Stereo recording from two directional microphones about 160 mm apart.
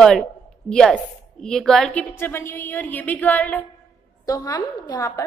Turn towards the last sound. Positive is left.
turn(degrees=25)  # may be behind; listen again after turning